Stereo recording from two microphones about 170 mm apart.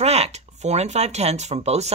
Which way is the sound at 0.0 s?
40° right (ahead or behind).